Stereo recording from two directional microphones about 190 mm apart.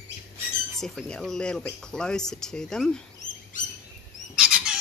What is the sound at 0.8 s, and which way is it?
A woman's voice, 5° left (ahead or behind).